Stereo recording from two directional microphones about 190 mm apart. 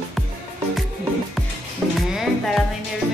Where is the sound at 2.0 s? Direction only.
Centre (ahead or behind).